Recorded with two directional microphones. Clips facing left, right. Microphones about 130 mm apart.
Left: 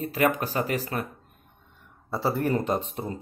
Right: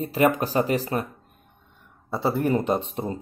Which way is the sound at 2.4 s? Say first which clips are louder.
Right 4 dB; 20° right (ahead or behind).